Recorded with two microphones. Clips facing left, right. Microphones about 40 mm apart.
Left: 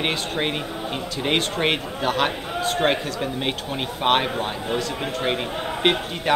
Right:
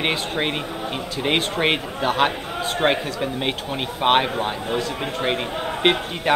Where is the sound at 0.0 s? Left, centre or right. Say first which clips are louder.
Right 1 dB; centre.